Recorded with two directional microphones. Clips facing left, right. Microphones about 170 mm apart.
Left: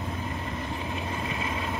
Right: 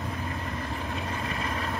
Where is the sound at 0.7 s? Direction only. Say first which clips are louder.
Even; 15° left (ahead or behind).